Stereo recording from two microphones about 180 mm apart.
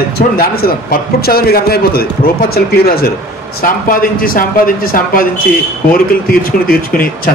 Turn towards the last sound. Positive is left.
turn(degrees=55)  # may be behind; listen again after turning